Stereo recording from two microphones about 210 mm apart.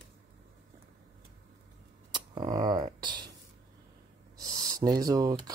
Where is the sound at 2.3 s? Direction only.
20° right (ahead or behind).